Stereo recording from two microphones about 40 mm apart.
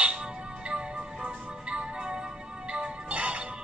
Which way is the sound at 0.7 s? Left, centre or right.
Right.